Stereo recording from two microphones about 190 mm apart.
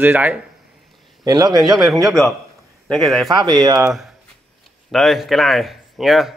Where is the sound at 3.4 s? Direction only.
20° right (ahead or behind).